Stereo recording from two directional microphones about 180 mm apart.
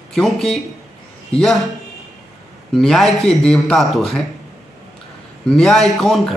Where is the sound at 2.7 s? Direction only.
Centre (ahead or behind).